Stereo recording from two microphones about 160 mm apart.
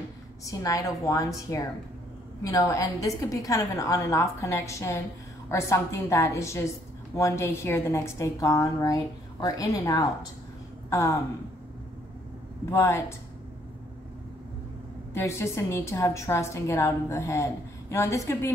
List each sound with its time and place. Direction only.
0.5 s a woman's voice: 20° left (ahead or behind)
12.7 s a woman's voice: 15° left (ahead or behind)
15.1 s a woman's voice: 15° left (ahead or behind)